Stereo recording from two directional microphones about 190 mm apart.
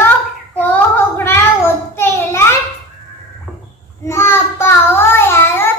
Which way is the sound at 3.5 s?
5° left (ahead or behind).